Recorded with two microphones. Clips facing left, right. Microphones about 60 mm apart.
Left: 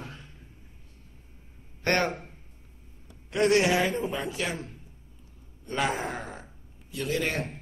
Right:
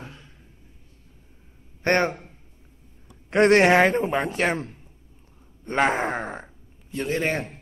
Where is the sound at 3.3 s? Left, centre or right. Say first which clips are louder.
Right 6 dB; right.